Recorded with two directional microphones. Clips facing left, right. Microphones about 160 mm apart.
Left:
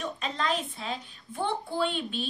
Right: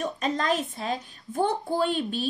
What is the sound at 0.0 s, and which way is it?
A woman's voice, 45° right (ahead or behind).